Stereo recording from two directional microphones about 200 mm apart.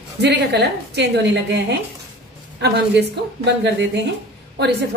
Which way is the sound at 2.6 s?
60° right (ahead or behind).